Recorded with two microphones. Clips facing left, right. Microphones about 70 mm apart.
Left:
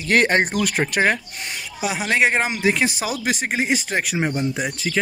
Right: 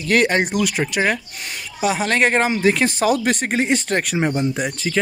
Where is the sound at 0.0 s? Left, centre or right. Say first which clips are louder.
Even; left.